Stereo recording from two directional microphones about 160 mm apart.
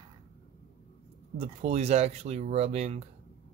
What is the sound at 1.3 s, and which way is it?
Speech, 45° right (ahead or behind).